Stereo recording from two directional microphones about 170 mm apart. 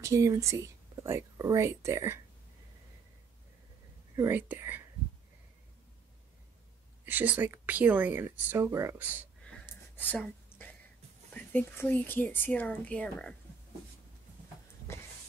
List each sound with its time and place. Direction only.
0.0 s speech: 20° right (ahead or behind)
4.1 s speech: 15° right (ahead or behind)
7.1 s speech: 10° right (ahead or behind)
9.4 s a sound: 5° left (ahead or behind)
11.3 s speech: 10° left (ahead or behind)